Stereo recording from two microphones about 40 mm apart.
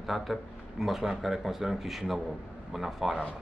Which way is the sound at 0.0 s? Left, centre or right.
Centre.